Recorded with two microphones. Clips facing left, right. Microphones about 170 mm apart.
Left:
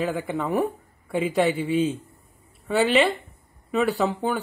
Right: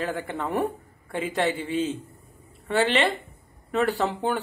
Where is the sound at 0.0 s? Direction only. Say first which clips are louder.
Left 3 dB; 5° left (ahead or behind).